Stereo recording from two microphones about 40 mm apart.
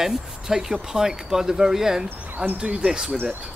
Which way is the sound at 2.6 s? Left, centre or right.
Right.